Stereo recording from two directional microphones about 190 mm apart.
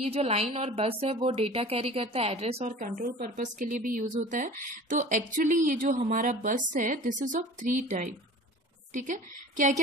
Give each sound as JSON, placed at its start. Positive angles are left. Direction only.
{"t": 0.1, "sound": "a woman's voice", "side_deg": -35}
{"t": 8.9, "sound": "a woman's voice", "side_deg": -40}